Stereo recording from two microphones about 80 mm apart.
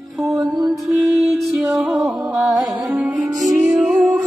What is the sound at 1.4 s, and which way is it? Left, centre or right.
Music, centre.